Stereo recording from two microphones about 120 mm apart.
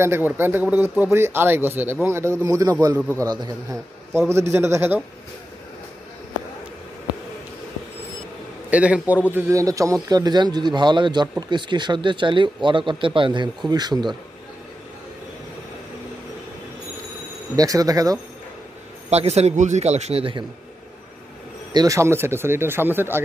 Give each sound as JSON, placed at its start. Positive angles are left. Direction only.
{"t": 0.0, "sound": "speech", "side_deg": -20}
{"t": 4.3, "sound": "speech", "side_deg": -20}
{"t": 8.6, "sound": "a man's voice", "side_deg": -10}
{"t": 9.5, "sound": "speech", "side_deg": -25}
{"t": 17.6, "sound": "speech", "side_deg": -30}
{"t": 19.0, "sound": "a man's voice", "side_deg": -60}
{"t": 21.7, "sound": "speech", "side_deg": -25}